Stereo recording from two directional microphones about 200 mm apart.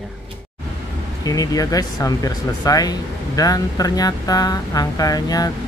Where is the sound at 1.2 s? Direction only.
15° left (ahead or behind).